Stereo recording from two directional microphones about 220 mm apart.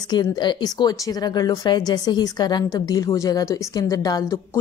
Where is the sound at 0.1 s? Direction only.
20° left (ahead or behind).